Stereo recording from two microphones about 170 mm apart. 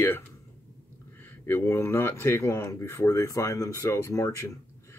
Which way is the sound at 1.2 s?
10° left (ahead or behind).